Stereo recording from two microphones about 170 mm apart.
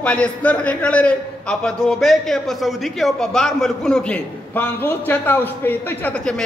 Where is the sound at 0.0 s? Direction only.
5° left (ahead or behind).